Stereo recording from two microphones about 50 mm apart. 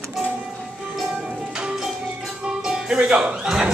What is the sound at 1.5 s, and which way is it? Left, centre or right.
Music, centre.